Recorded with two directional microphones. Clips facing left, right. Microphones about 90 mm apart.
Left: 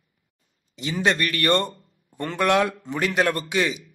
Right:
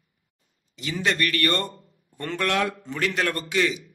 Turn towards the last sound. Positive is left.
turn(degrees=15)  # may be behind; listen again after turning